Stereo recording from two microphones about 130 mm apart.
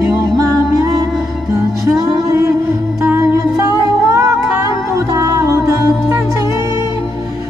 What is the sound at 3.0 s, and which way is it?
Music, 20° right (ahead or behind).